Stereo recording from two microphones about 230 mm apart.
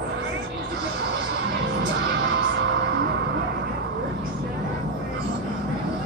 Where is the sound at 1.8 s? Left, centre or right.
Right.